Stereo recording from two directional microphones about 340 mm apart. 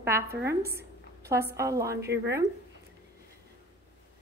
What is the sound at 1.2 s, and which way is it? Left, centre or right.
Speech, centre.